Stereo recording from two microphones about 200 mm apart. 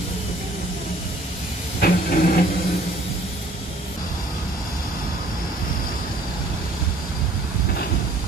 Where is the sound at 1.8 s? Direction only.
50° left (ahead or behind).